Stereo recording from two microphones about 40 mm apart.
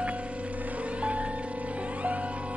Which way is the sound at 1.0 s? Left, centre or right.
Right.